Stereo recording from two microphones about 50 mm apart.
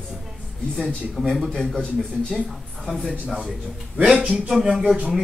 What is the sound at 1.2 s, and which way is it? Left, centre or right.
Speech, centre.